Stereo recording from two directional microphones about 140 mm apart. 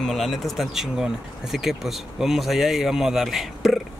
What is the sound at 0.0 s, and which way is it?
Speech, centre (ahead or behind).